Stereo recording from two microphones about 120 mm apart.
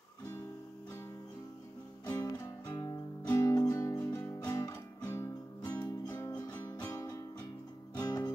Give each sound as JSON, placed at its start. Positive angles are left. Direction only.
{"t": 2.0, "sound": "music", "side_deg": 25}